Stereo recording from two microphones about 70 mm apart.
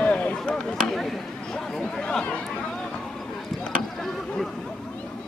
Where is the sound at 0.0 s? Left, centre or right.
Centre.